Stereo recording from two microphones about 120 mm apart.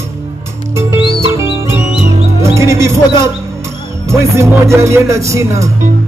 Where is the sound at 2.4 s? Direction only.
25° right (ahead or behind).